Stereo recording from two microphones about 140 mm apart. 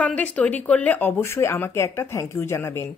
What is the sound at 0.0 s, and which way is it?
A woman's voice, 10° left (ahead or behind).